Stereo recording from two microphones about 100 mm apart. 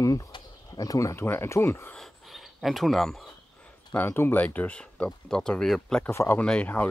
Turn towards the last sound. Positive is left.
turn(degrees=15)  # may be behind; listen again after turning